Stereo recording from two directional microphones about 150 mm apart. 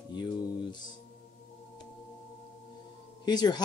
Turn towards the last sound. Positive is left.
turn(degrees=30)  # may be behind; listen again after turning